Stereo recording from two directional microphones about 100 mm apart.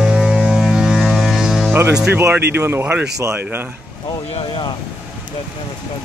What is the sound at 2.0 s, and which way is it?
Speech, 20° right (ahead or behind).